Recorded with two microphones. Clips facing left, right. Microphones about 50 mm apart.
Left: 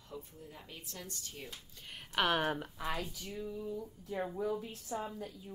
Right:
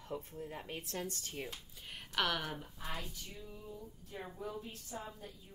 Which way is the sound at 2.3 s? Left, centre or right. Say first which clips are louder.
Left 7 dB; left.